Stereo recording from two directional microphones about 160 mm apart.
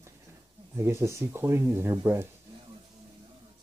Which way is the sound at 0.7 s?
15° right (ahead or behind).